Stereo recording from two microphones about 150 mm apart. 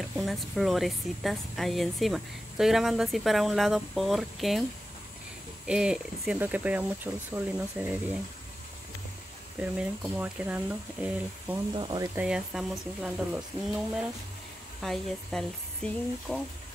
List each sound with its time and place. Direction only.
0.2 s speech: centre (ahead or behind)
5.7 s speech: 5° right (ahead or behind)
9.6 s speech: 5° right (ahead or behind)
11.7 s speech: 30° right (ahead or behind)
12.2 s speech: 5° right (ahead or behind)
14.8 s speech: centre (ahead or behind)